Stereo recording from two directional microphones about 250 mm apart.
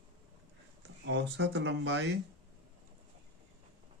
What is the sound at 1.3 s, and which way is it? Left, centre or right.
Speech, right.